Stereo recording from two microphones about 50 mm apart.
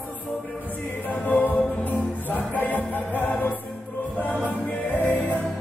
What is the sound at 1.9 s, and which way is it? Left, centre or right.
Music, left.